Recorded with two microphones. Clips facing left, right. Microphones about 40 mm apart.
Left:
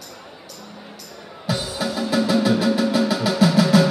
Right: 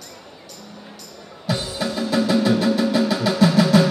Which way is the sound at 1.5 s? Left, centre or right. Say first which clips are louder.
Even; centre.